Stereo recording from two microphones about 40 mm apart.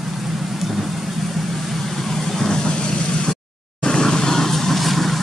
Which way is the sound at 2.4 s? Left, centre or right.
Centre.